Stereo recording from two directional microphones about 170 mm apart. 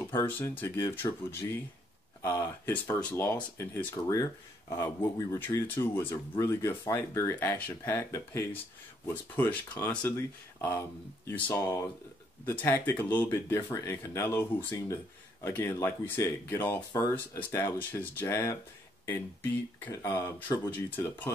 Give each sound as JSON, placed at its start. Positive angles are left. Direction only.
{"t": 0.1, "sound": "speech", "side_deg": 10}
{"t": 19.8, "sound": "speech", "side_deg": 15}